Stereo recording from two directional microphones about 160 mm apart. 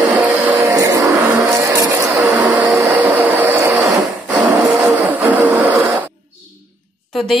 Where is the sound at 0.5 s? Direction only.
20° right (ahead or behind).